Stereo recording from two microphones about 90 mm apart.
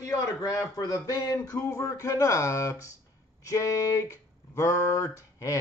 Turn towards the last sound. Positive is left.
turn(degrees=35)  # may be behind; listen again after turning